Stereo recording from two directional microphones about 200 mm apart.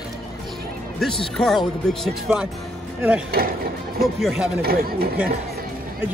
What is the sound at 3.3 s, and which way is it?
Speech, 50° right (ahead or behind).